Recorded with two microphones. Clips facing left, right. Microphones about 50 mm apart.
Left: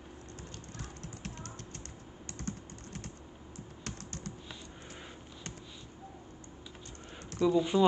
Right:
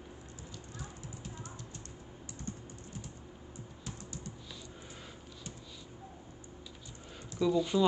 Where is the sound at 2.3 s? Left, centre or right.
Left.